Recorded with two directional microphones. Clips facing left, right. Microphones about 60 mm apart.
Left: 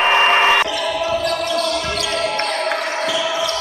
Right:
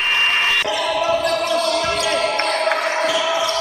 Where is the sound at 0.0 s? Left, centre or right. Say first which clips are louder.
Left 5 dB; left.